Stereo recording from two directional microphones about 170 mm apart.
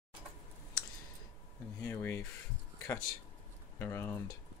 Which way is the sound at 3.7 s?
15° left (ahead or behind).